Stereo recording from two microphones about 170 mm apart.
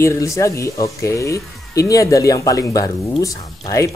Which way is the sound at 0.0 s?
15° left (ahead or behind).